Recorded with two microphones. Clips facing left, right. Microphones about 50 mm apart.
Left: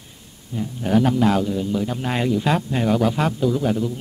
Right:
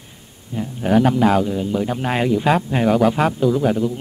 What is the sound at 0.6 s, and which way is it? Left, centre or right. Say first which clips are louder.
A man's voice: right 3 dB; centre.